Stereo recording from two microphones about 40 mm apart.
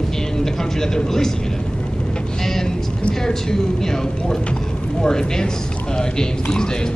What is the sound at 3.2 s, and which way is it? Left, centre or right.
Speech, centre.